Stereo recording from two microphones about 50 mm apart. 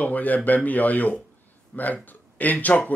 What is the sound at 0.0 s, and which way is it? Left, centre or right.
Speech, left.